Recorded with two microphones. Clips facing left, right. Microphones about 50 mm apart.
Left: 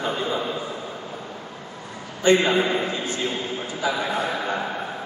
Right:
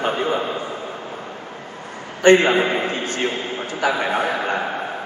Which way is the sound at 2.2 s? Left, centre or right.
Right.